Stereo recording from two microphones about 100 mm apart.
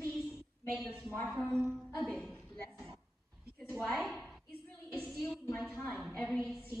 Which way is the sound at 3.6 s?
Centre (ahead or behind).